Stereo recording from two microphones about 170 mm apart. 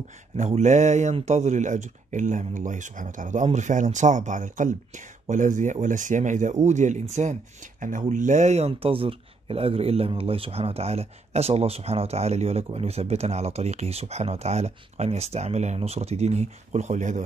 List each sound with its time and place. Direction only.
0.4 s speech: 45° right (ahead or behind)